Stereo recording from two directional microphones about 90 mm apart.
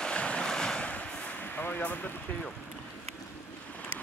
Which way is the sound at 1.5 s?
20° left (ahead or behind).